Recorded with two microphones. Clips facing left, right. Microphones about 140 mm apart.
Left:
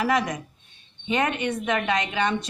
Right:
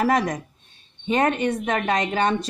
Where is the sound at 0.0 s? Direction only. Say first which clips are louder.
Right 3 dB; 40° right (ahead or behind).